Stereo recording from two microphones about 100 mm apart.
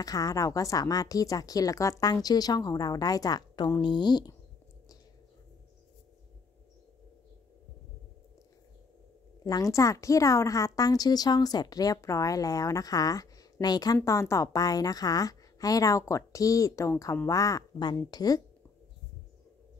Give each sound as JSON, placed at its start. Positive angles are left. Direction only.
{"t": 0.0, "sound": "a woman's voice", "side_deg": 35}
{"t": 9.4, "sound": "a woman's voice", "side_deg": 35}
{"t": 14.0, "sound": "a woman's voice", "side_deg": 30}